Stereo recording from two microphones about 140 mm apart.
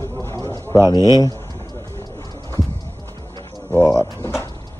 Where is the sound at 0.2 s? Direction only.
15° left (ahead or behind).